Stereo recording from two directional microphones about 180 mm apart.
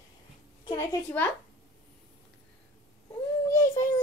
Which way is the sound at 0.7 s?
15° left (ahead or behind).